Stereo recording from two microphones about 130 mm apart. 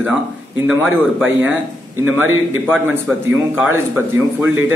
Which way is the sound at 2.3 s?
15° right (ahead or behind).